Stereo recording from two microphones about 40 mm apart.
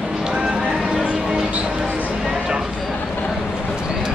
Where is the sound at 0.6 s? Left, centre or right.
Centre.